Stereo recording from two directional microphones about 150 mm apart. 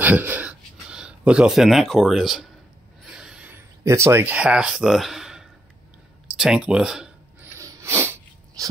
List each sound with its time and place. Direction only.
0.0 s speech: 10° right (ahead or behind)
3.1 s a sound: 5° right (ahead or behind)
7.5 s sneeze: 20° right (ahead or behind)